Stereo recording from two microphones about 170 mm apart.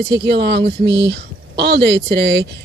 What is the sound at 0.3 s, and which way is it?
Speech, 80° right.